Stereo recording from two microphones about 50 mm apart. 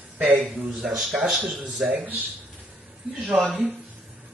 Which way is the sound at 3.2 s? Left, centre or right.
Centre.